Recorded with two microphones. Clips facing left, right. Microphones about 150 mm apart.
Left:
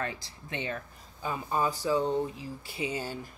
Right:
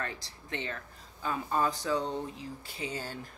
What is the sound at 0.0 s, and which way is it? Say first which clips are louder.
Speech: left 3 dB; 15° left (ahead or behind).